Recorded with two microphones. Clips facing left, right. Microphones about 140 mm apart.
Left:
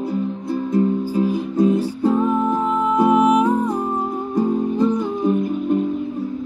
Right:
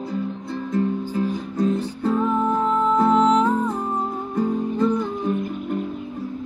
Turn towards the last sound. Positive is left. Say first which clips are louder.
# left 3 dB
turn(degrees=10)  # may be behind; listen again after turning